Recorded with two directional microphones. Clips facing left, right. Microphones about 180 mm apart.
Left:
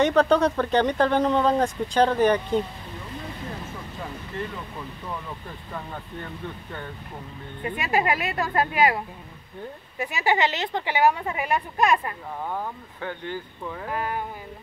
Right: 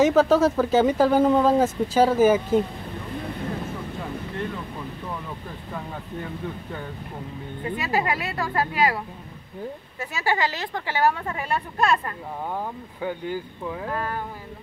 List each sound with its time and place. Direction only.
0.0 s speech: 5° right (ahead or behind)
7.6 s a woman's voice: 20° left (ahead or behind)
12.4 s speech: 10° right (ahead or behind)
13.8 s a woman's voice: 15° left (ahead or behind)